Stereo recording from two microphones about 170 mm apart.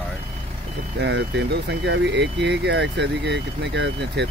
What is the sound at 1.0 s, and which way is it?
Speech, 85° right.